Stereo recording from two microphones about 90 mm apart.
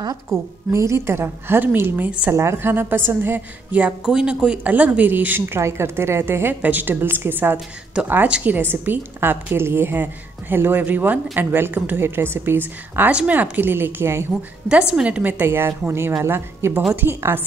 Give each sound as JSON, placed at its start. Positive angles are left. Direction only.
{"t": 0.3, "sound": "a woman's voice", "side_deg": -30}
{"t": 2.3, "sound": "a woman's voice", "side_deg": -30}
{"t": 7.5, "sound": "a woman's voice", "side_deg": -10}
{"t": 14.7, "sound": "a woman's voice", "side_deg": -10}